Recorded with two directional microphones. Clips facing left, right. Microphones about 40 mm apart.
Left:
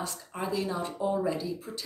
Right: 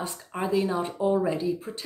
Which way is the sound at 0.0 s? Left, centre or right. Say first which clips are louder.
Right 4 dB; right.